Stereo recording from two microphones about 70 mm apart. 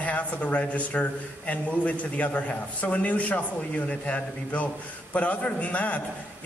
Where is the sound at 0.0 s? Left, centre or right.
Centre.